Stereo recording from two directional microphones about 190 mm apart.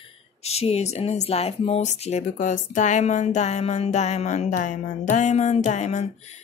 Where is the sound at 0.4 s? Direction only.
35° left (ahead or behind).